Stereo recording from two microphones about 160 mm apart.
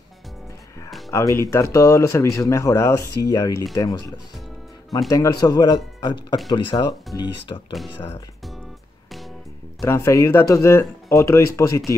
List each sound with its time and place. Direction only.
1.1 s speech: 20° left (ahead or behind)
5.1 s speech: 20° left (ahead or behind)
9.8 s speech: 15° left (ahead or behind)